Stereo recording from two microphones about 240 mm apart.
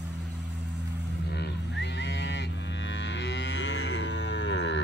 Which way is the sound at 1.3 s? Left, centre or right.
Left.